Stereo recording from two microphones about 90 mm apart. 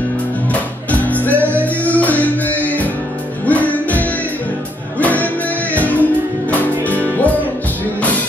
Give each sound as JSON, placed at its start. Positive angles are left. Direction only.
{"t": 0.5, "sound": "music", "side_deg": 15}